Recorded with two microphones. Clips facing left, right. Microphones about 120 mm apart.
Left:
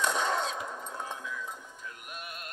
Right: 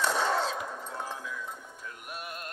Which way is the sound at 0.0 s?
5° right (ahead or behind).